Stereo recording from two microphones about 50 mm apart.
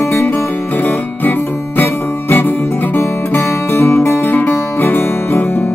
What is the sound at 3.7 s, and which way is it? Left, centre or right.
Music, left.